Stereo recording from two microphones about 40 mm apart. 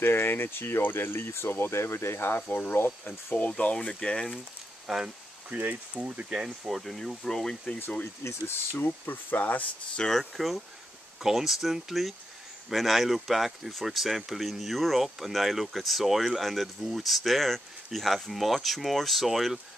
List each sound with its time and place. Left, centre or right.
0.0 s speech: left
3.3 s speech: left
3.7 s speech: left
4.8 s speech: centre
5.9 s speech: right
6.3 s speech: centre
6.7 s speech: centre
8.0 s speech: left
8.8 s speech: left
10.0 s speech: centre